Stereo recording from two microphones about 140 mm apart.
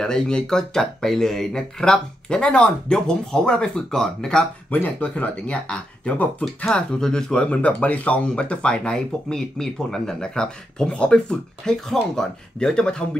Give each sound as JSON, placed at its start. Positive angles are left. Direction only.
{"t": 0.0, "sound": "speech", "side_deg": 5}